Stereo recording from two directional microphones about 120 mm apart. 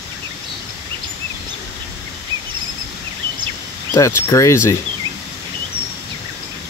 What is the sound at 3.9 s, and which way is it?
Speech, 25° left (ahead or behind).